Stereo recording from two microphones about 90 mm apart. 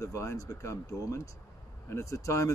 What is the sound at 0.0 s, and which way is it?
Speech, 35° left (ahead or behind).